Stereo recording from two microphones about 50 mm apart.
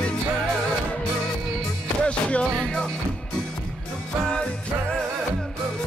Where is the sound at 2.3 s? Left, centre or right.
Centre.